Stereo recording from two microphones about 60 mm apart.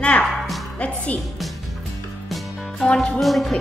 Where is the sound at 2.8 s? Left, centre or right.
Centre.